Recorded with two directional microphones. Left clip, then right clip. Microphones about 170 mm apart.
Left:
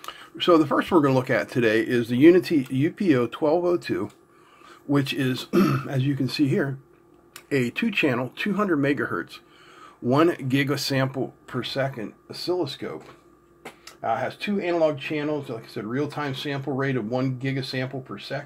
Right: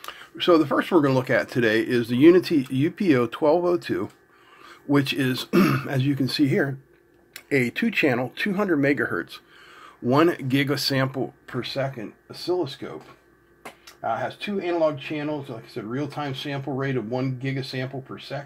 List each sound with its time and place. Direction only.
0.0 s speech: 5° right (ahead or behind)
14.0 s speech: 10° left (ahead or behind)